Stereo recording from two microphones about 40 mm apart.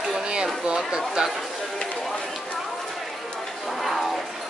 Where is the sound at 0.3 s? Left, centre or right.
Right.